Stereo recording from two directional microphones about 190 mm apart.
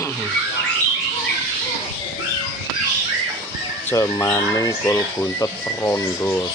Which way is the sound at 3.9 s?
15° left (ahead or behind).